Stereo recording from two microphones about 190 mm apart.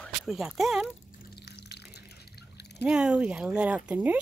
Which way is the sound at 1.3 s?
60° left (ahead or behind).